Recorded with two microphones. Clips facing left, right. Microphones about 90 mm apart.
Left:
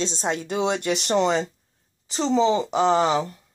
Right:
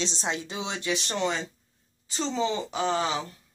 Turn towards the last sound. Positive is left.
turn(degrees=55)  # may be behind; listen again after turning